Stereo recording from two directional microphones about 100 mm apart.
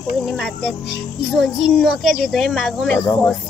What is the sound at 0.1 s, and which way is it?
A child's voice, centre (ahead or behind).